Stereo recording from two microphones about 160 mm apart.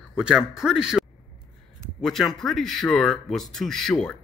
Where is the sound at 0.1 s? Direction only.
5° right (ahead or behind).